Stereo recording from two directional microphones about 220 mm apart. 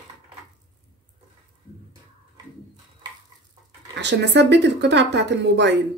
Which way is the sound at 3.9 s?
50° right (ahead or behind).